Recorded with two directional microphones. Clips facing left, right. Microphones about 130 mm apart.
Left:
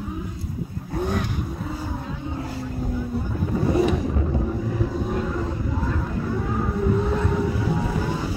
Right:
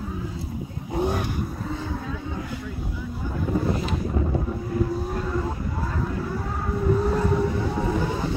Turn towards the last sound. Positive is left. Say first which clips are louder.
# right 1 dB
turn(degrees=0)  # may be behind; listen again after turning